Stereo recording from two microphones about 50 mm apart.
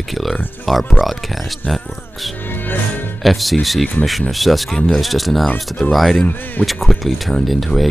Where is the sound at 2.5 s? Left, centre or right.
Left.